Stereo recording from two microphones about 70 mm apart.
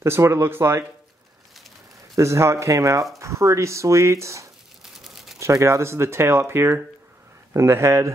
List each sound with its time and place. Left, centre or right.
0.0 s speech: right
2.1 s speech: right
4.8 s a sound: centre
5.4 s speech: right